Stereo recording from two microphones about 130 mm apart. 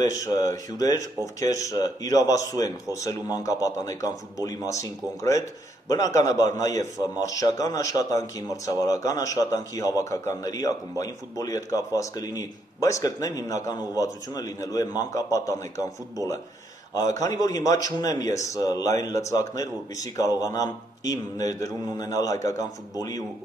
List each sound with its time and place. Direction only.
0.1 s speech: 25° left (ahead or behind)
16.9 s speech: 25° left (ahead or behind)